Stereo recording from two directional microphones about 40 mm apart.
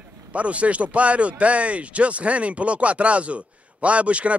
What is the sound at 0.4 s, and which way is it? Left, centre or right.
Speech, right.